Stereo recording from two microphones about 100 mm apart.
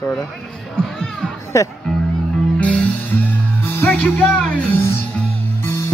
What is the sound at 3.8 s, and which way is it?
Speech, 15° left (ahead or behind).